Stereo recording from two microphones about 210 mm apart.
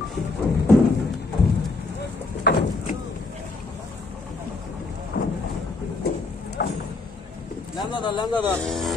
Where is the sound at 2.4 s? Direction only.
50° left (ahead or behind).